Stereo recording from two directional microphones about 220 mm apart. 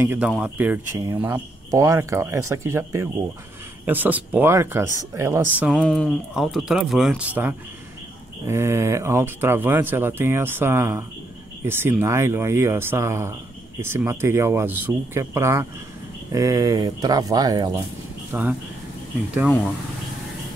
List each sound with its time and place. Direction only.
0.0 s speech: 10° right (ahead or behind)